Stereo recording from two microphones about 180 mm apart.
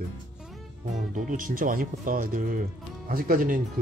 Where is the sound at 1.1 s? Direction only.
50° right (ahead or behind).